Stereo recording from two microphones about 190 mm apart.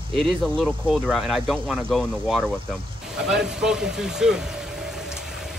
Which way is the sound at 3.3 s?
5° right (ahead or behind).